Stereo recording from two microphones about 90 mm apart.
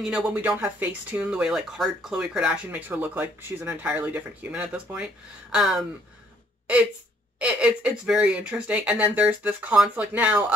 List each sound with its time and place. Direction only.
0.0 s speech: 10° right (ahead or behind)
7.3 s speech: 10° right (ahead or behind)